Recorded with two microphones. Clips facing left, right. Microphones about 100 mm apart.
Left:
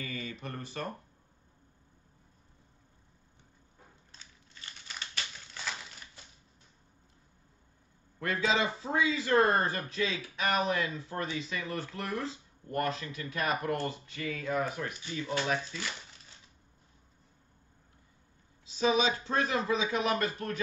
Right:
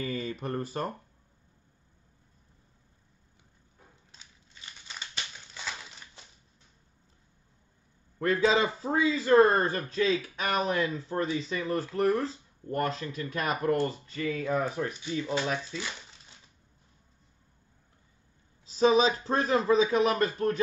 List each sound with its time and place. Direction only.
0.0 s speech: 35° right (ahead or behind)
4.1 s crushing: 15° right (ahead or behind)
8.2 s a man's voice: 35° right (ahead or behind)
18.7 s a man's voice: 40° right (ahead or behind)